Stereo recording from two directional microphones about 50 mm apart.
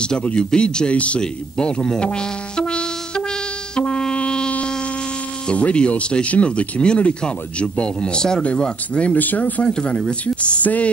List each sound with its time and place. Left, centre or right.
0.0 s speech: left
3.7 s music: centre
5.5 s speech: left
9.1 s speech: left
9.6 s speech: centre
10.6 s speech: left